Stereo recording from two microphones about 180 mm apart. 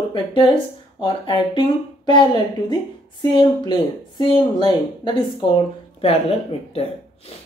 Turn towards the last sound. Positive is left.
turn(degrees=35)  # may be behind; listen again after turning